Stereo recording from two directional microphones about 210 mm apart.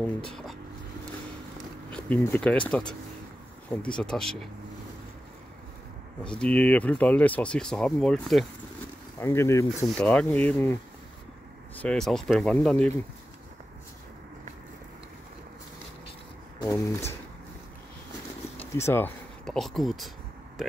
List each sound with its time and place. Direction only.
0.0 s speech: 5° left (ahead or behind)
2.0 s speech: 5° left (ahead or behind)
6.2 s speech: 5° left (ahead or behind)
9.2 s speech: 15° left (ahead or behind)
11.8 s speech: 5° left (ahead or behind)
16.6 s speech: 15° left (ahead or behind)
18.6 s speech: 10° left (ahead or behind)